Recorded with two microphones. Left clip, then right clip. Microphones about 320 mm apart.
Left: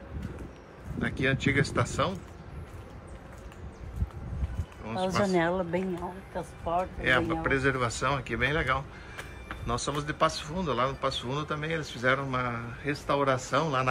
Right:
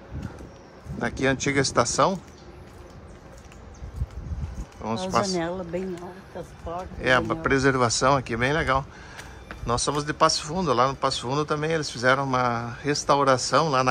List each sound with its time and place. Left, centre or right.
1.0 s a man's voice: centre
4.8 s speech: centre
5.3 s speech: left
7.0 s a man's voice: centre